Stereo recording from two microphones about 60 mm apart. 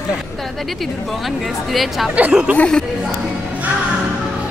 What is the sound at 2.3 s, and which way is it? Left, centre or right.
Speech, centre.